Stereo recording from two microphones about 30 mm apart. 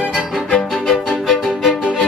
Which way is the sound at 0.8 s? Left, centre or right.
Centre.